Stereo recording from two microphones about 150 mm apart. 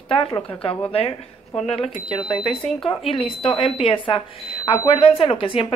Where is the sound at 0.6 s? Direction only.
40° left (ahead or behind).